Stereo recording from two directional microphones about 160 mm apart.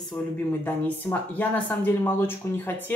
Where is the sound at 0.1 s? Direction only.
10° left (ahead or behind).